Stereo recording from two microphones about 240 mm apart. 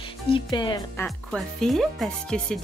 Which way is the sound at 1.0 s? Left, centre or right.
Centre.